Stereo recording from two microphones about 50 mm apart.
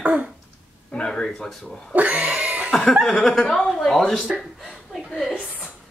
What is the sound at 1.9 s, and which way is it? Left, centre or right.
Pig, right.